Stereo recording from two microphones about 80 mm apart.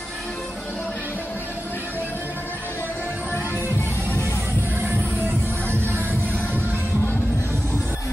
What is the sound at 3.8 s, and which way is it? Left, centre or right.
Music, left.